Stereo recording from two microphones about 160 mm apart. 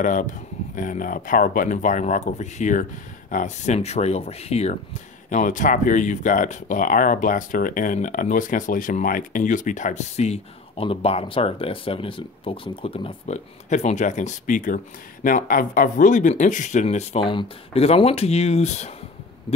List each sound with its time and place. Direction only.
0.0 s speech: 55° left (ahead or behind)
5.3 s speech: 50° left (ahead or behind)